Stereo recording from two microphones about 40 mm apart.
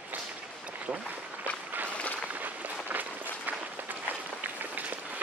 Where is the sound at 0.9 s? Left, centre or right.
Right.